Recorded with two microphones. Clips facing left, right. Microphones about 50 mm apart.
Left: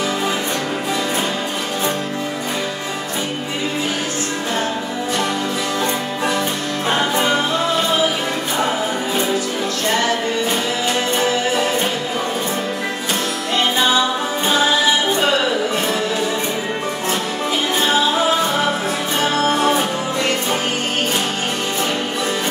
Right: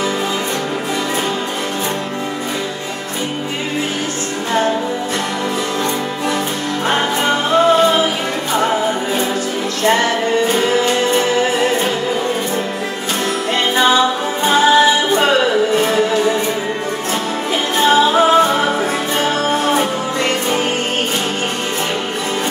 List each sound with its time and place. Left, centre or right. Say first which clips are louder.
6.9 s music: right 1 dB; right
17.8 s music: right 7 dB; right
19.7 s music: right 2 dB; right